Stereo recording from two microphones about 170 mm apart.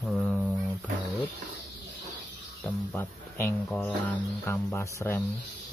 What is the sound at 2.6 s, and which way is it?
Speech, 10° left (ahead or behind).